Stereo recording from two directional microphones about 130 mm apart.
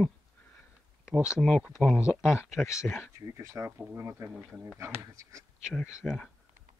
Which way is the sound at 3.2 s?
25° right (ahead or behind).